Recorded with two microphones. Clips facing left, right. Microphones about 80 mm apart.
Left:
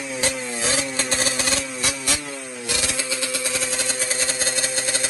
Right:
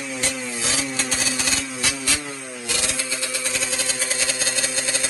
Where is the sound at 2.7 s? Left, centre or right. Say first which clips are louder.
Left 1 dB; left.